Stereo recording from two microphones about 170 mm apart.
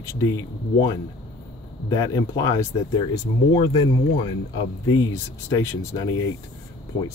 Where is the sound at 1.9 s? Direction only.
25° left (ahead or behind).